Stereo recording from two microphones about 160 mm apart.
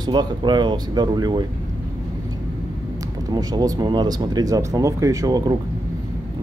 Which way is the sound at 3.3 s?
25° right (ahead or behind).